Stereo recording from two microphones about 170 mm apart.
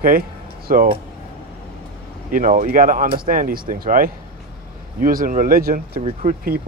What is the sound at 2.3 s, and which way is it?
Speech, 55° right (ahead or behind).